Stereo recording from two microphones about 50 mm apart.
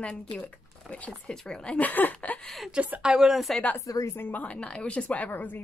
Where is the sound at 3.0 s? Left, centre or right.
Centre.